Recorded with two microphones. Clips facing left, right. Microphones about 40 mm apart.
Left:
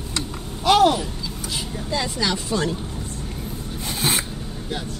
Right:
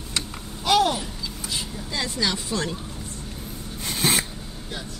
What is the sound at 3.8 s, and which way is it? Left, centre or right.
Filing, centre.